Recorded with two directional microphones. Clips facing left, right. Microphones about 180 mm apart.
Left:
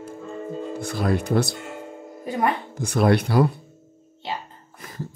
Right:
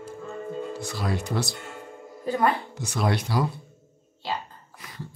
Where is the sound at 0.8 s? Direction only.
55° left (ahead or behind).